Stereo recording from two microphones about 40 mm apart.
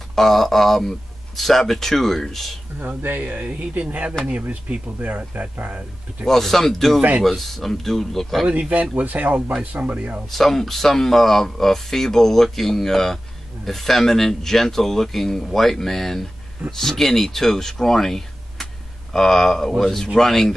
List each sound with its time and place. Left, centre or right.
0.1 s speech: centre
3.0 s speech: right
4.3 s speech: right
5.0 s speech: right
6.2 s speech: centre
8.5 s speech: right
10.3 s speech: centre